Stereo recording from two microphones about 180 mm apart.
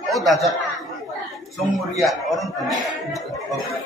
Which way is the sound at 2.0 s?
Centre (ahead or behind).